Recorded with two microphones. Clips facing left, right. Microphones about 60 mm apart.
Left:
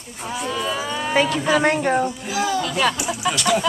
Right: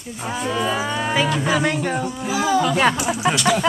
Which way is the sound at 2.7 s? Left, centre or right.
Right.